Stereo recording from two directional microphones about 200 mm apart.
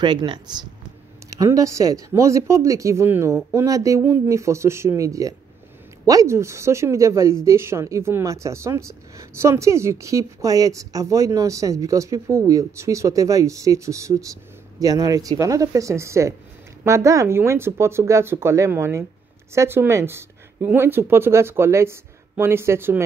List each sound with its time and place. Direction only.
0.0 s a woman's voice: 20° right (ahead or behind)